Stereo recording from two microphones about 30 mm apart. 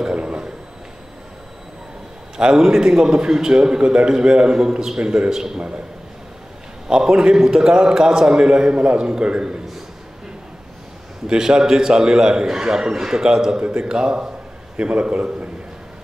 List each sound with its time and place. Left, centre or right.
0.0 s a sound: right
2.3 s a man's voice: right
5.3 s a man's voice: centre
6.9 s a man's voice: right
11.2 s a man's voice: right